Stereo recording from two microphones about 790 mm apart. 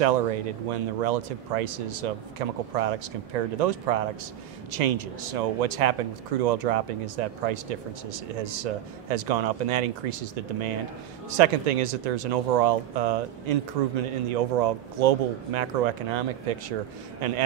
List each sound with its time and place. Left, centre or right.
0.0 s speech: right